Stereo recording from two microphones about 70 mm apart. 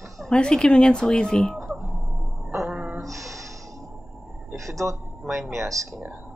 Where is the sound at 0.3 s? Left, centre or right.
Centre.